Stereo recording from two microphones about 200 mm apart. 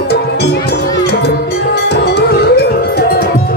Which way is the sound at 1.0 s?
55° left (ahead or behind).